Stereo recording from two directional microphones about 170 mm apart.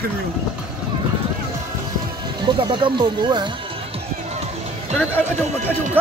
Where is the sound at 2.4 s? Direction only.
25° right (ahead or behind).